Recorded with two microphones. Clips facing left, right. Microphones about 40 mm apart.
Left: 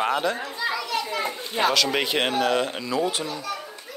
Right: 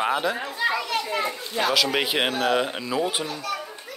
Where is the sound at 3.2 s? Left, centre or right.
Right.